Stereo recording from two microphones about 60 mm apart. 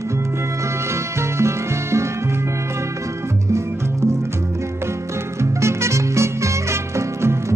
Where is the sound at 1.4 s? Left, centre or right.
Right.